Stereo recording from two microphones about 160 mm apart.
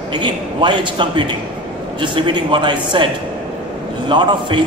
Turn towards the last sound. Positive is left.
turn(degrees=-30)  # may be behind; listen again after turning